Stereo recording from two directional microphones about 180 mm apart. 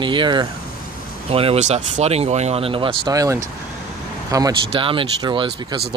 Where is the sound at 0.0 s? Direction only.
25° right (ahead or behind).